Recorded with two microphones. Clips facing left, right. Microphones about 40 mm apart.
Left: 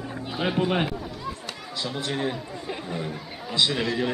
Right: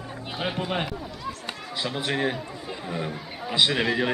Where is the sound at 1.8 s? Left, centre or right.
Centre.